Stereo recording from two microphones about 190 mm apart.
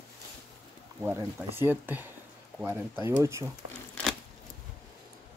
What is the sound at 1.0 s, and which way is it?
Speech, 10° right (ahead or behind).